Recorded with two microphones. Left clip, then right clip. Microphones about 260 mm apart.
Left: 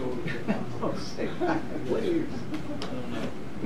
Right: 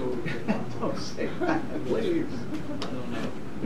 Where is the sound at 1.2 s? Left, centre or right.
Centre.